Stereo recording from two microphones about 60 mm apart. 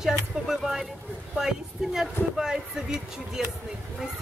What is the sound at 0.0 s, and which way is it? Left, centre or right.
Speech, centre.